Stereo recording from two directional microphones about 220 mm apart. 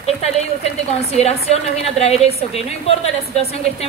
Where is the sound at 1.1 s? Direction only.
30° left (ahead or behind).